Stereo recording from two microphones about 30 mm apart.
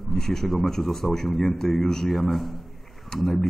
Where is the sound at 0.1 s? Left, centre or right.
Centre.